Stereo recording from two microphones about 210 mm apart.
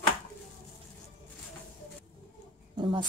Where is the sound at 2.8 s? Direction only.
25° right (ahead or behind).